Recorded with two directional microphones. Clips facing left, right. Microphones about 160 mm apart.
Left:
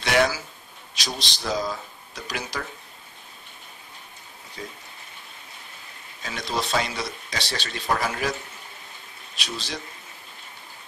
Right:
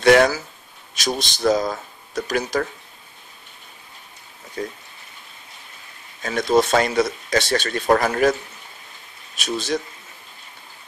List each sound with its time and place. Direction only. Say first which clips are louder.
0.0 s speech: right 8 dB; 50° right (ahead or behind)
6.2 s speech: right 11 dB; 50° right (ahead or behind)
9.4 s speech: right 10 dB; 50° right (ahead or behind)